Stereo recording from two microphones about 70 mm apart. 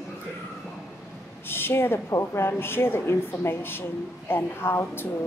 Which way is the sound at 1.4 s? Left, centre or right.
Left.